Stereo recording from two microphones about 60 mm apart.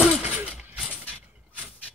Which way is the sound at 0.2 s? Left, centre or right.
Right.